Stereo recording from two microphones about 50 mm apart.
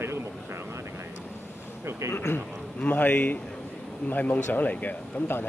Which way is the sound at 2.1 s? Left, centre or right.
Left.